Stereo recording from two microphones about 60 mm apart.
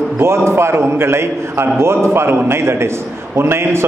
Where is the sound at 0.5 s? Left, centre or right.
Right.